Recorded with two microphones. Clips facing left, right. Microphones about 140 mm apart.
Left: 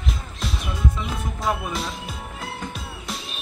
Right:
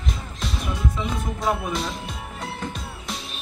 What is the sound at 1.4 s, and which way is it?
Speech, centre (ahead or behind).